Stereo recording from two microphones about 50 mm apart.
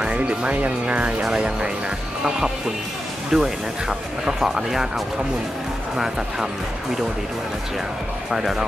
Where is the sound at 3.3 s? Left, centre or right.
Centre.